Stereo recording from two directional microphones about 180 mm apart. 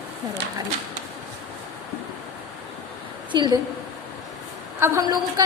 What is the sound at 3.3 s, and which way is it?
Speech, 25° right (ahead or behind).